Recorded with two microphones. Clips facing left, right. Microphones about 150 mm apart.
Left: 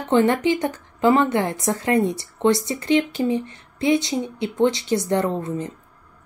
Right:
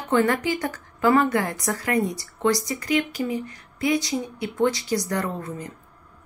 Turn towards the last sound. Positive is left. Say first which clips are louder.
# left 6 dB
turn(degrees=25)  # may be behind; listen again after turning